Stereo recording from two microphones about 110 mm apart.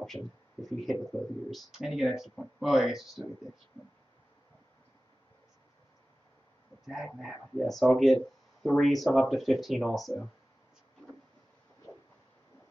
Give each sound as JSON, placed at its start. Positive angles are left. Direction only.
{"t": 0.0, "sound": "speech", "side_deg": 0}
{"t": 7.2, "sound": "speech", "side_deg": 0}